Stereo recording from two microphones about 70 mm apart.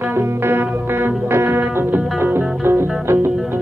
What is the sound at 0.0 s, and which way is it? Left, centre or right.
Music, right.